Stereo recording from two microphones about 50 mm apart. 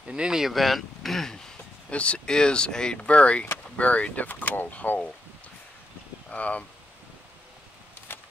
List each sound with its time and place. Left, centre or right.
0.0 s speech: centre
0.5 s speech: centre
1.9 s speech: left
6.3 s speech: left
8.1 s a sound: left